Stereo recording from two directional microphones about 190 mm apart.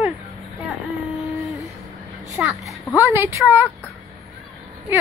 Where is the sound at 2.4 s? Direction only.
Centre (ahead or behind).